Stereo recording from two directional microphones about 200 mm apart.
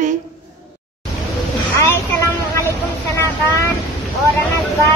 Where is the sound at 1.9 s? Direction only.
10° left (ahead or behind).